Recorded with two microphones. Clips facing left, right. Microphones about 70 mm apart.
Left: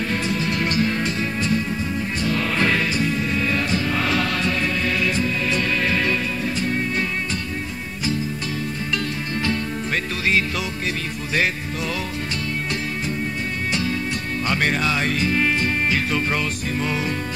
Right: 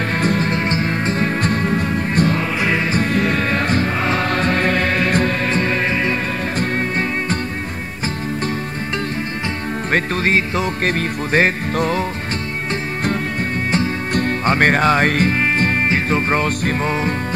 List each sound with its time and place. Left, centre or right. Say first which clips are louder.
0.2 s music: right 6 dB; right
0.5 s music: right 2 dB; right
4.0 s music: right 4 dB; right
5.5 s music: right 3 dB; right
6.6 s music: right 4 dB; right
9.9 s music: right 5 dB; right
14.1 s music: right 7 dB; right
15.9 s music: right 4 dB; right
16.4 s music: right 5 dB; right